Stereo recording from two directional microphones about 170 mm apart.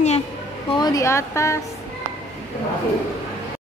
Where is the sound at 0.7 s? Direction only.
20° left (ahead or behind).